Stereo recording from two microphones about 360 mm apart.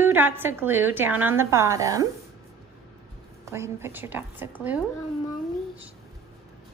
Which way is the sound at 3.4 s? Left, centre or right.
Centre.